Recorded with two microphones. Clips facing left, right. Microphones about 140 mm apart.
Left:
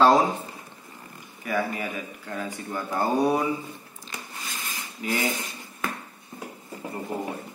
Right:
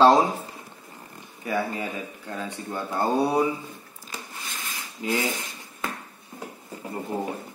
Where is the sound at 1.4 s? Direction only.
25° right (ahead or behind).